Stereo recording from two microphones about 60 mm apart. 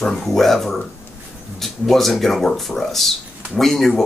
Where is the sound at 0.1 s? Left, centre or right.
Centre.